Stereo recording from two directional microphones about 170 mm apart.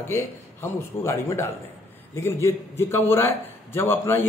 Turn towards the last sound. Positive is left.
turn(degrees=15)  # may be behind; listen again after turning